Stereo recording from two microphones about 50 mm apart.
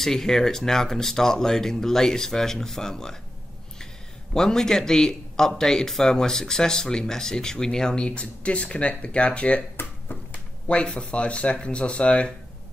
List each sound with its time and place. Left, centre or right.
0.0 s speech: centre
4.3 s speech: centre
9.8 s a sound: left
10.7 s speech: left